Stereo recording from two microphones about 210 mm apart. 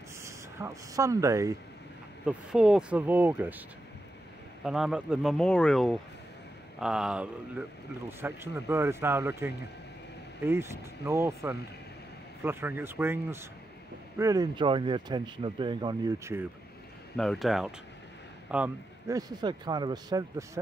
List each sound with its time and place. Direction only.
0.2 s speech: 15° right (ahead or behind)
2.2 s a man's voice: 5° right (ahead or behind)
4.6 s a man's voice: centre (ahead or behind)
17.2 s a man's voice: centre (ahead or behind); by 20.4 s 15° right (ahead or behind)